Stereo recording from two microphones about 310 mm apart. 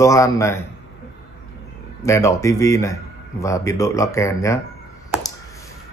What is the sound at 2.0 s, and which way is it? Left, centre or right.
Speech, centre.